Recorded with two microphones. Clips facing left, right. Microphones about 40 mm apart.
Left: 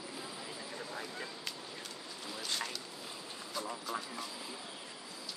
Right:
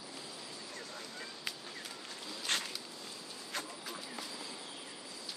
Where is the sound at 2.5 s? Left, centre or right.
Right.